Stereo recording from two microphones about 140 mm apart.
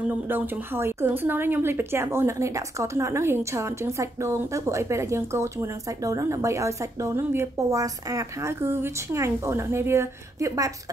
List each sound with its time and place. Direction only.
0.3 s a woman's voice: 15° right (ahead or behind)